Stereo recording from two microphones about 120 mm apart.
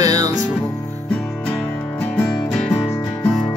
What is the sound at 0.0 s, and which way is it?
Music, 30° right (ahead or behind).